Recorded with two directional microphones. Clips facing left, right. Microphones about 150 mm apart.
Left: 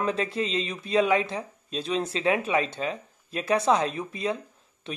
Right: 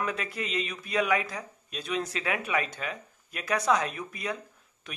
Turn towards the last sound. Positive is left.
turn(degrees=25)  # may be behind; listen again after turning